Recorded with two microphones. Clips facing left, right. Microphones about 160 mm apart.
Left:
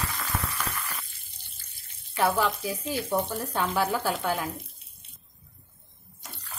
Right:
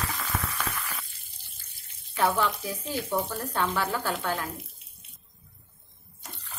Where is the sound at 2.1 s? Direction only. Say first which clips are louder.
Left 1 dB; centre (ahead or behind).